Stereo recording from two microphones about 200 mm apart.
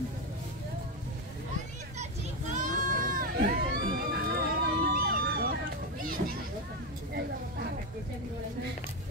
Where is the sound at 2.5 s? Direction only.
40° right (ahead or behind).